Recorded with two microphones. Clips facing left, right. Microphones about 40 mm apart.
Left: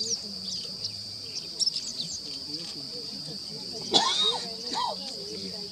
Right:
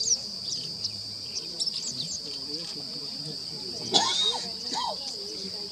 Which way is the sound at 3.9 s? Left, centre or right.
Centre.